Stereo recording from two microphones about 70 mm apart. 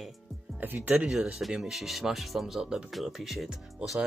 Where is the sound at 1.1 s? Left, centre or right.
Centre.